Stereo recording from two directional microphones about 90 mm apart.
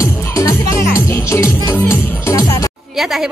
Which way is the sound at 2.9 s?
5° right (ahead or behind).